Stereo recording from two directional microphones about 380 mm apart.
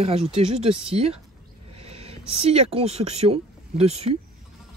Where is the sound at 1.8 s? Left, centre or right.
Centre.